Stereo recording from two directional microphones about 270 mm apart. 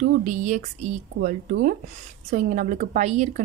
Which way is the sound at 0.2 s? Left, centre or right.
Right.